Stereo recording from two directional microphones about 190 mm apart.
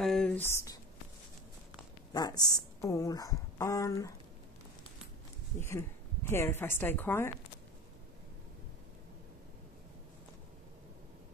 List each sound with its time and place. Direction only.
0.0 s a sound: 5° left (ahead or behind)
2.1 s a woman's voice: 20° left (ahead or behind)
5.6 s a woman's voice: 10° left (ahead or behind)